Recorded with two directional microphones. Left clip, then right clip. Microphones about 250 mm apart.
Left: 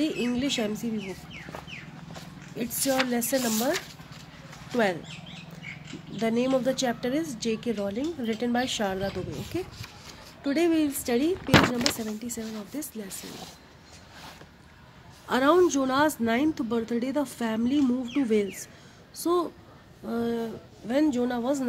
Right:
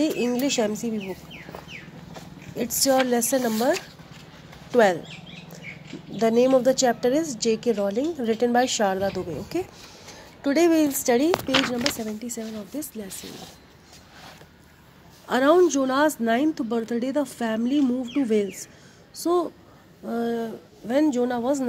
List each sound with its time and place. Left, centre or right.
0.0 s a woman's voice: centre
2.5 s a woman's voice: centre
6.1 s a woman's voice: centre
15.2 s a woman's voice: centre